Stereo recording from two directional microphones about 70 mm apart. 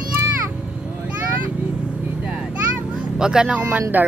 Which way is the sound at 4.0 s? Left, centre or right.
Right.